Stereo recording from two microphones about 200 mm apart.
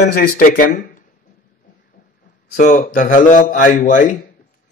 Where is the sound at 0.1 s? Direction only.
50° left (ahead or behind).